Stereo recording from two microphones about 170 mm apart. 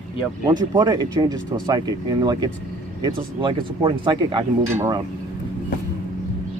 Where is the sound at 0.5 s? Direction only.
25° right (ahead or behind).